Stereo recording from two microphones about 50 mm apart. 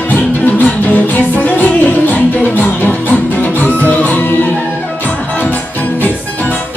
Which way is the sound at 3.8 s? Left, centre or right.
Left.